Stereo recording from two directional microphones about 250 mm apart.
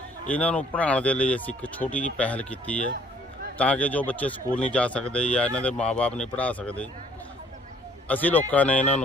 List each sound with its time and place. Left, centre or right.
0.3 s speech: centre
8.1 s speech: centre